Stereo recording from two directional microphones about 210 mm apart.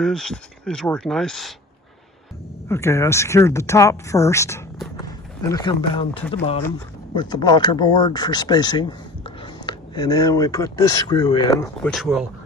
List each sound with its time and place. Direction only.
0.0 s speech: 5° left (ahead or behind)
2.7 s speech: 10° left (ahead or behind)
11.8 s speech: centre (ahead or behind)